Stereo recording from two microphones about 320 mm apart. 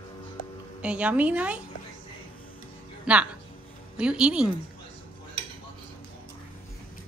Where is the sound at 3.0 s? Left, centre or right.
Centre.